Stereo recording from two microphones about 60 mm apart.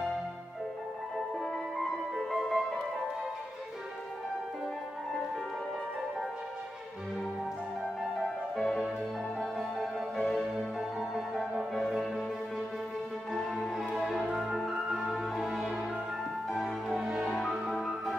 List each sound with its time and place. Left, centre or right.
2.1 s music: centre
8.0 s music: centre
13.3 s music: centre
16.9 s music: centre
17.3 s music: centre